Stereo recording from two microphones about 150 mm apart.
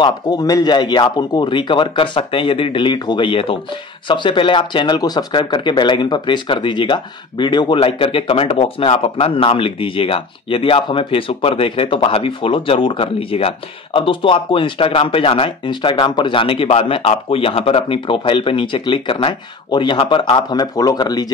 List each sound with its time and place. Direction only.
0.0 s speech: 25° left (ahead or behind)